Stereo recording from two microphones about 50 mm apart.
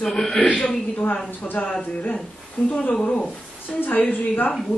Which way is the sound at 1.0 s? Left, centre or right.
Left.